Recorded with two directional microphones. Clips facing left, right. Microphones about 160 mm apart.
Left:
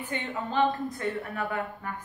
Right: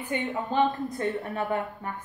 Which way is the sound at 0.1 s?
15° right (ahead or behind).